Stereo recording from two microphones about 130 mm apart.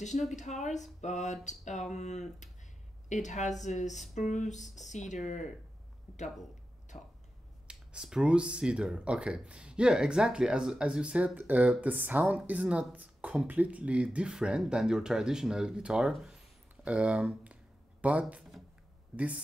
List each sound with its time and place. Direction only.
0.4 s speech: 65° left (ahead or behind)
6.9 s speech: 50° left (ahead or behind)
7.6 s speech: 5° right (ahead or behind)